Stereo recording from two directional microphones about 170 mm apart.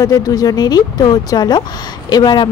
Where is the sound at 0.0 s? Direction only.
20° left (ahead or behind).